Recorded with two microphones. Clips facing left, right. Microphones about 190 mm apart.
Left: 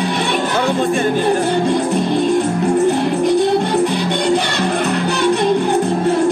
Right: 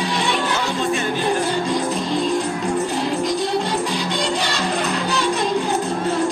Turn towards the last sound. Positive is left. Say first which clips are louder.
# left 6 dB
turn(degrees=60)  # may be behind; listen again after turning